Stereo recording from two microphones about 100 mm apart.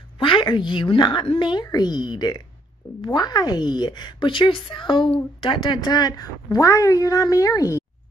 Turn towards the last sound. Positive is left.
turn(degrees=35)  # may be behind; listen again after turning